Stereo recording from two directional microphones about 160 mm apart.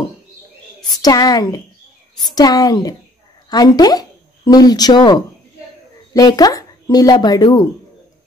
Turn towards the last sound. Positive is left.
turn(degrees=25)  # may be behind; listen again after turning